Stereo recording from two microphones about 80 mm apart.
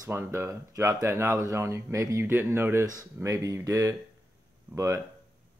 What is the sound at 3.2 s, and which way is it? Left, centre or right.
Speech, right.